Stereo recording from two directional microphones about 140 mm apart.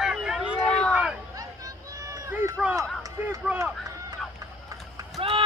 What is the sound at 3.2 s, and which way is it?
Speech, 10° right (ahead or behind).